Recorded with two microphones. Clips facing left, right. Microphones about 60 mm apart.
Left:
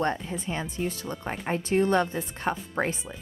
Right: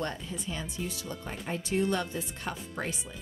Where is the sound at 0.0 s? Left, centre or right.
Left.